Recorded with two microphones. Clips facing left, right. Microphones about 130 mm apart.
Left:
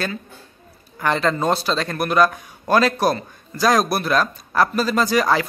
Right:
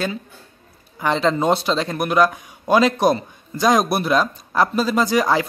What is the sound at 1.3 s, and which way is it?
A man's voice, 20° right (ahead or behind).